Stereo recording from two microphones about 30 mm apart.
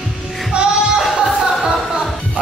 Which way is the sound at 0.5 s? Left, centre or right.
Right.